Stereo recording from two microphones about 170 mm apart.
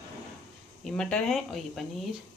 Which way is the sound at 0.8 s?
5° left (ahead or behind).